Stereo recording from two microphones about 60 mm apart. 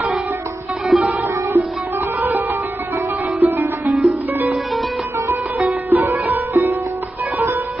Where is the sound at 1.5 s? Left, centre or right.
Right.